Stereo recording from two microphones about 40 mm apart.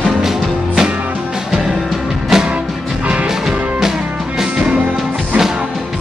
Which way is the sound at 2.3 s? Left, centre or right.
Centre.